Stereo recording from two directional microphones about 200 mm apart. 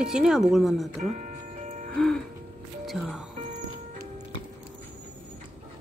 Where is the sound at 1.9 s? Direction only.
5° left (ahead or behind).